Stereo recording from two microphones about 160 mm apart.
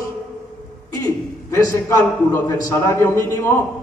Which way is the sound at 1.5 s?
15° left (ahead or behind).